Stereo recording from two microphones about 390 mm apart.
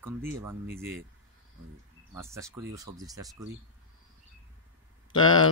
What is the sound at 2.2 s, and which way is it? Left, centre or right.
Speech, centre.